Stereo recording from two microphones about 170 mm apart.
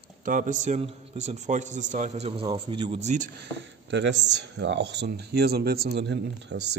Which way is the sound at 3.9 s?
90° right.